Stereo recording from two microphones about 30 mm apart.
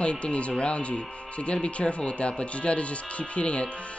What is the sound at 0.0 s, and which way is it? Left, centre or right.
Speech, left.